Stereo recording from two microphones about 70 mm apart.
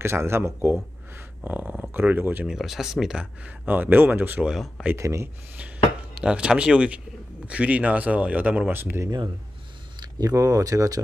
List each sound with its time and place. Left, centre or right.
0.0 s speech: right
2.4 s speech: centre; by 4.5 s right
4.5 s speech: centre
4.9 s speech: right
6.1 s speech: centre
10.1 s speech: right